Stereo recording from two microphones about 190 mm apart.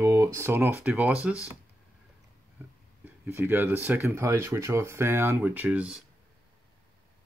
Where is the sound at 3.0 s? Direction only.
10° right (ahead or behind).